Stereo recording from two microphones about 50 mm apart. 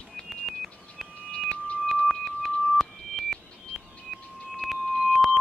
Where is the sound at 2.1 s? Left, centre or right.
Centre.